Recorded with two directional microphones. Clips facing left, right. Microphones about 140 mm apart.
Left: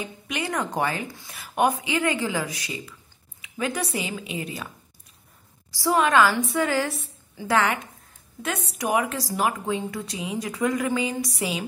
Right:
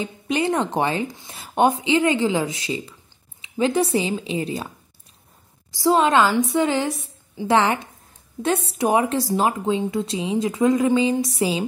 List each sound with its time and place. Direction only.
0.0 s speech: 25° right (ahead or behind)
5.7 s speech: 20° right (ahead or behind)